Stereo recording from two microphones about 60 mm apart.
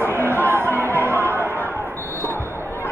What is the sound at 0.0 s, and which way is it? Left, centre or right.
Music, right.